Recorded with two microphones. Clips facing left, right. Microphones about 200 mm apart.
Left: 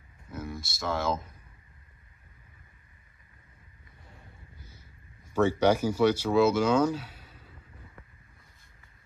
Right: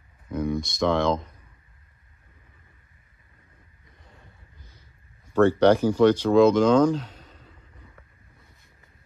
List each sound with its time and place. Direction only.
0.3 s speech: 5° left (ahead or behind)
5.3 s speech: 10° left (ahead or behind)